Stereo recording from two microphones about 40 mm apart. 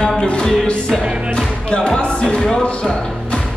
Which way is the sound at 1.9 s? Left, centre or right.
Left.